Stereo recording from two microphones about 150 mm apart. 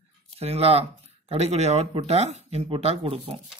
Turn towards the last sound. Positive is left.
turn(degrees=-40)  # may be behind; listen again after turning